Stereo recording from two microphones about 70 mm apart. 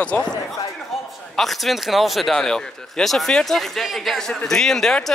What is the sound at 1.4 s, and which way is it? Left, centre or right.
Speech, centre.